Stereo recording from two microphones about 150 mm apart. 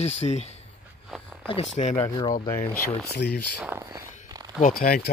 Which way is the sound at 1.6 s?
50° left (ahead or behind).